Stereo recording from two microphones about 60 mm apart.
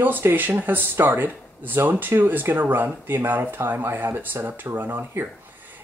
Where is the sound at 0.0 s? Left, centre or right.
Right.